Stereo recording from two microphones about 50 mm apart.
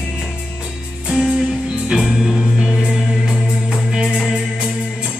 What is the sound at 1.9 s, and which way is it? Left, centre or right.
Music, centre.